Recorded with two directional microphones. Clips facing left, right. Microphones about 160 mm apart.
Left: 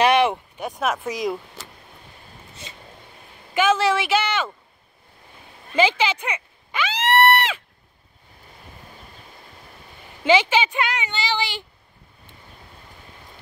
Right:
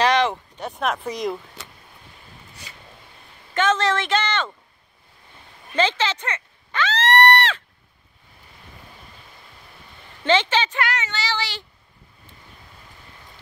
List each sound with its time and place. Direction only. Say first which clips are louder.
0.0 s a sound: left 2 dB; 15° left (ahead or behind)
0.7 s speech: left 1 dB; centre (ahead or behind)
2.6 s speech: left 5 dB; 25° left (ahead or behind)
3.5 s a woman's voice: left 2 dB; 10° left (ahead or behind)
5.8 s a sound: left 2 dB; 10° left (ahead or behind)
10.2 s a woman's voice: left 2 dB; 10° left (ahead or behind)